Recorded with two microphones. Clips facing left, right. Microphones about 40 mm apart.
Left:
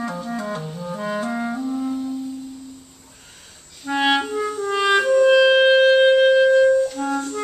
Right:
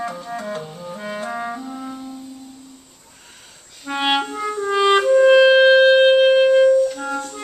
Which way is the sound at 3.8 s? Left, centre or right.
Centre.